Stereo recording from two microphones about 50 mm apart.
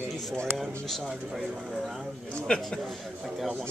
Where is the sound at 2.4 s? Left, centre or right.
Centre.